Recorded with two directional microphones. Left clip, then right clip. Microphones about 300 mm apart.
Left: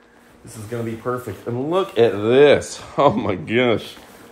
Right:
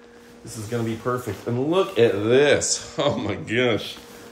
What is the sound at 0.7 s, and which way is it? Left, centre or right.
Speech, centre.